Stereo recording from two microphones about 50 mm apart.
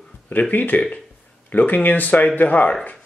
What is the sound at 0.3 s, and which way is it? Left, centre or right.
Speech, left.